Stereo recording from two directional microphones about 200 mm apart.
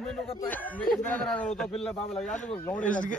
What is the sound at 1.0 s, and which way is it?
Speech, 5° left (ahead or behind).